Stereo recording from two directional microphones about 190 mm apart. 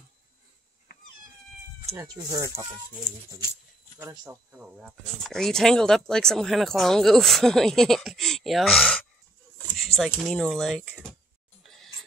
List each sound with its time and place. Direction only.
2.0 s speech: 15° right (ahead or behind)
4.5 s speech: 5° right (ahead or behind)